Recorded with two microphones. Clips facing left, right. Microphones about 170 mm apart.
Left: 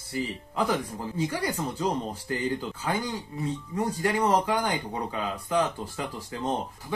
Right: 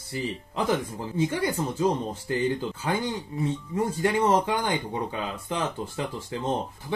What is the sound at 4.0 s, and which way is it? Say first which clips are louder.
Speech: right 2 dB; 25° right (ahead or behind).